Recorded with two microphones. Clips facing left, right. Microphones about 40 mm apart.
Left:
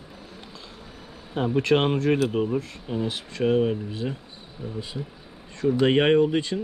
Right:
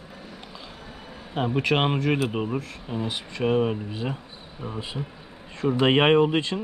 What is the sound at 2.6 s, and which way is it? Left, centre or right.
Speech, centre.